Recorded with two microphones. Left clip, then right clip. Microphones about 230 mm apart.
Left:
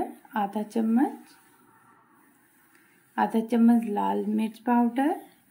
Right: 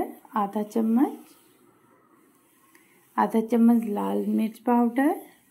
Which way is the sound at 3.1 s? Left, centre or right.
Centre.